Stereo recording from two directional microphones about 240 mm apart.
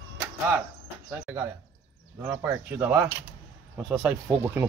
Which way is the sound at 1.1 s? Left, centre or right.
Centre.